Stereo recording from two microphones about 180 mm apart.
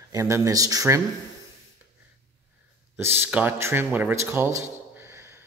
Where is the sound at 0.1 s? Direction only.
15° right (ahead or behind).